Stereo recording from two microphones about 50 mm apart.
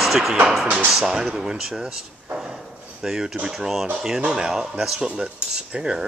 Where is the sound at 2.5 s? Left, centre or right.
Centre.